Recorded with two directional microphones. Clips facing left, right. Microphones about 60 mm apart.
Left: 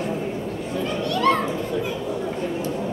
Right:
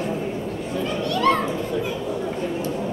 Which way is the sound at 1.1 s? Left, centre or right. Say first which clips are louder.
Even; left.